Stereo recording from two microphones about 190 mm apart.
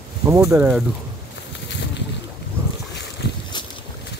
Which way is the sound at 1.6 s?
65° left (ahead or behind).